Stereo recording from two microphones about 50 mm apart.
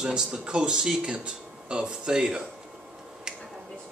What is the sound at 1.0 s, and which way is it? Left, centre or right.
Speech, right.